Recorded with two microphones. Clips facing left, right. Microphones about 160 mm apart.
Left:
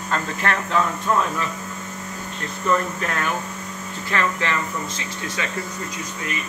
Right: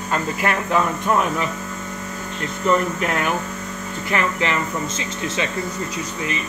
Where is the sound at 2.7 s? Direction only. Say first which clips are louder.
Right 3 dB; 15° right (ahead or behind).